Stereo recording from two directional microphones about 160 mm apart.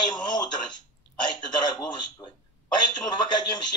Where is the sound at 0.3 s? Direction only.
25° left (ahead or behind).